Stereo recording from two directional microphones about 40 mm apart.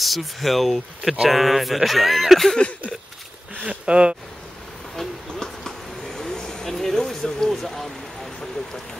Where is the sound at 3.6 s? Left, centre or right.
Right.